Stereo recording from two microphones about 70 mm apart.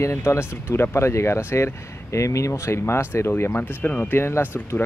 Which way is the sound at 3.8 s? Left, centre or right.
Centre.